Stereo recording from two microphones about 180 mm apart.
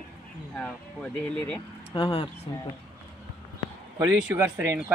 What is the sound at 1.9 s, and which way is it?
Speech, 30° left (ahead or behind).